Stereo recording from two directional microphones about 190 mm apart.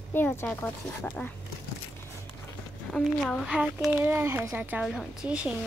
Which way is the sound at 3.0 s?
Centre (ahead or behind).